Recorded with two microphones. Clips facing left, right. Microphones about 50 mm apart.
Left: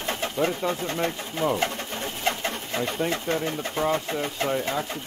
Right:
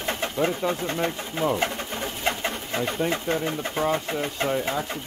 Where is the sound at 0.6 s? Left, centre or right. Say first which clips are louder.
Right 1 dB; centre.